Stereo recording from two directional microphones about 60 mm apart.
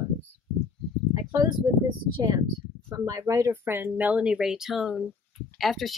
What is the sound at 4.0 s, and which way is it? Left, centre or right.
Speech, right.